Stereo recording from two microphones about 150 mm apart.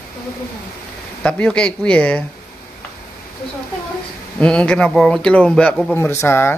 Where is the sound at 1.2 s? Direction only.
5° left (ahead or behind).